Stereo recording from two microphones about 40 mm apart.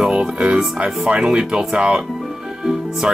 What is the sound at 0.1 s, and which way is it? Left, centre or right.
Speech, right.